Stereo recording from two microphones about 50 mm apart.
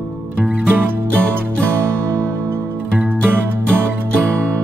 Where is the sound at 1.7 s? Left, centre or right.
Right.